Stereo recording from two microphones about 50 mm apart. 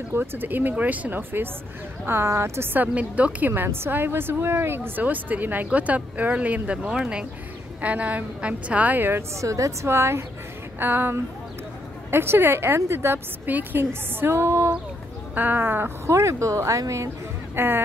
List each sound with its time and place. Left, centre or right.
0.1 s speech: right
2.0 s speech: right
2.9 s a woman's voice: right
3.5 s a woman's voice: right
6.8 s speech: centre
7.8 s a woman's voice: right
9.4 s speech: right
10.8 s speech: right
13.5 s speech: right
15.3 s speech: right
16.1 s speech: right
17.6 s speech: right